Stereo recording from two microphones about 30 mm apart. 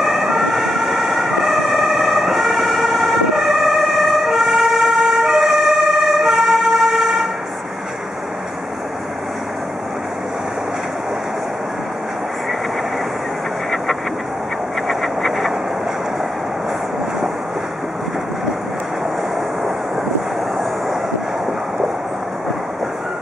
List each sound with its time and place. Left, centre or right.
0.0 s emergency vehicle: centre
5.1 s emergency vehicle: right
5.4 s emergency vehicle: centre
14.9 s vehicle: centre